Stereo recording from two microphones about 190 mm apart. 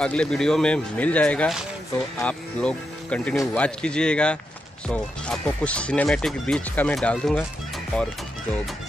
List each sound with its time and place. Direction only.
0.0 s speech: 5° left (ahead or behind)